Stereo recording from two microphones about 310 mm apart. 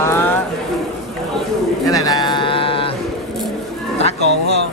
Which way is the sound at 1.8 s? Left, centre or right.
Centre.